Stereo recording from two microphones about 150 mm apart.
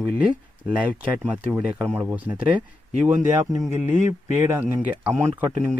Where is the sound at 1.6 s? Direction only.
10° right (ahead or behind).